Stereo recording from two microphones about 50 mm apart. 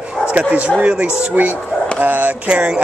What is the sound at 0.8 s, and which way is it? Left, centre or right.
Music, right.